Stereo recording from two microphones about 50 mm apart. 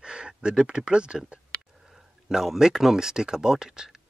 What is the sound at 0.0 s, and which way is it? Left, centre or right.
Speech, centre.